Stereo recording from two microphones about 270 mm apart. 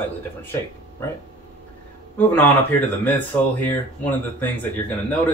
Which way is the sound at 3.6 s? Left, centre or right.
Centre.